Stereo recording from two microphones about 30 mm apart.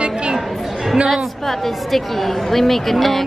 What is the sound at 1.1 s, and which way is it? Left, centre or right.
A woman's voice, centre.